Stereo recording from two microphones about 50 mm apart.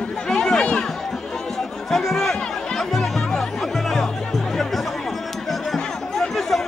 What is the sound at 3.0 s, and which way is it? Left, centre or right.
Music, centre.